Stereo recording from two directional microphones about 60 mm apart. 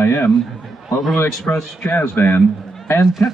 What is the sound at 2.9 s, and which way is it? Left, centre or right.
Speech, left.